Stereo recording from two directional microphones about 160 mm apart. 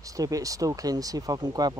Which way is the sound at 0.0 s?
20° right (ahead or behind).